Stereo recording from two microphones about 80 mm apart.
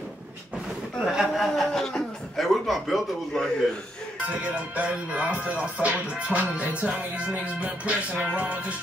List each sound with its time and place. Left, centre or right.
0.9 s a man's voice: centre
4.3 s music: centre